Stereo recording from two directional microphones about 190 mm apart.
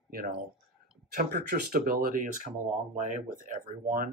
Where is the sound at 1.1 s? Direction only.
50° right (ahead or behind).